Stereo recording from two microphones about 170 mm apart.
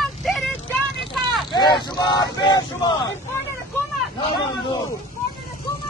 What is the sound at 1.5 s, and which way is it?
Speech, 25° left (ahead or behind).